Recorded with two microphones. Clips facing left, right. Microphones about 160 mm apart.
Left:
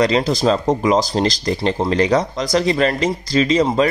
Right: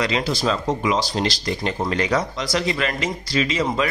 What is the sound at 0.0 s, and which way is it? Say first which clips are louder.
Speech: left 6 dB; 40° left (ahead or behind).